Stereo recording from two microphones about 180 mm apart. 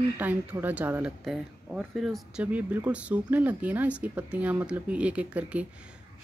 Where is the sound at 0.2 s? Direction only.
10° right (ahead or behind).